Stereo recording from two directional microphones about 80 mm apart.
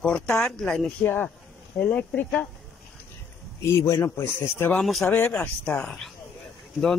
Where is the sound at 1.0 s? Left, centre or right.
Left.